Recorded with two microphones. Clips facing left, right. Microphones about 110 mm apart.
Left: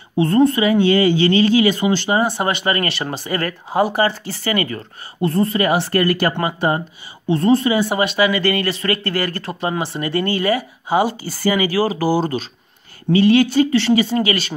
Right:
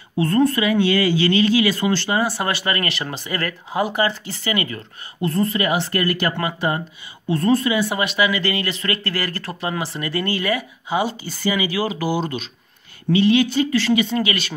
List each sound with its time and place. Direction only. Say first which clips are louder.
0.1 s speech: left 3 dB; 25° left (ahead or behind)
1.8 s speech: left 2 dB; 15° left (ahead or behind)
2.0 s speech: left 3 dB; 25° left (ahead or behind)
8.3 s speech: left 4 dB; 45° left (ahead or behind)